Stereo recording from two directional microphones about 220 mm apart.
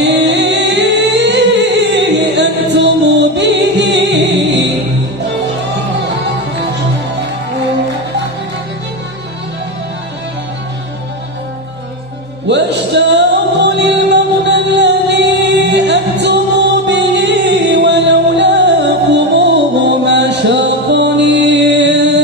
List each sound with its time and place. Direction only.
0.0 s music: 50° right (ahead or behind)
12.4 s music: 50° right (ahead or behind)
19.9 s mantra: 50° right (ahead or behind)